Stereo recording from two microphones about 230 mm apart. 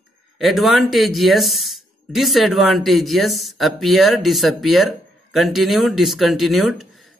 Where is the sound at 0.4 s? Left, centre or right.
Centre.